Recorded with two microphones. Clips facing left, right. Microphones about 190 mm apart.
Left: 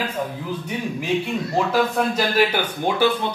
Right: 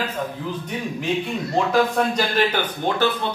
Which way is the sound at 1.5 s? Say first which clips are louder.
Right 2 dB; 5° left (ahead or behind).